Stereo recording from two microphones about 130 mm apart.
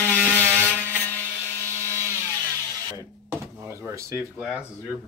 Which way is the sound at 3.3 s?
20° right (ahead or behind).